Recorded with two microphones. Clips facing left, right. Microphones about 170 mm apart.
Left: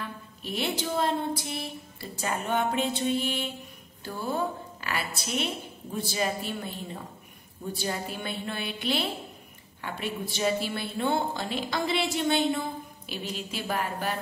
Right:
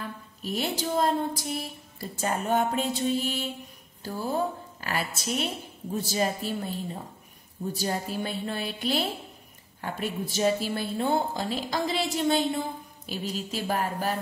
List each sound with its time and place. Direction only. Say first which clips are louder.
0.4 s a woman's voice: right 1 dB; 40° right (ahead or behind)
4.8 s a sound: right 2 dB; 40° right (ahead or behind)
5.2 s a woman's voice: right 1 dB; 40° right (ahead or behind)